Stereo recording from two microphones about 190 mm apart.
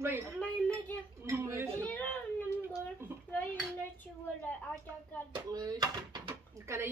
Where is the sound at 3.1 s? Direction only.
10° right (ahead or behind).